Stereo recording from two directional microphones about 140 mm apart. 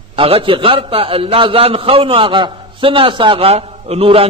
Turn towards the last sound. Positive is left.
turn(degrees=-45)  # may be behind; listen again after turning